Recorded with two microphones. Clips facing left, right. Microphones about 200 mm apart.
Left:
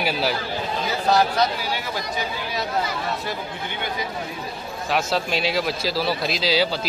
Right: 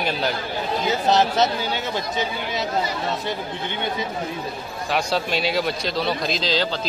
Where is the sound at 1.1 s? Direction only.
20° right (ahead or behind).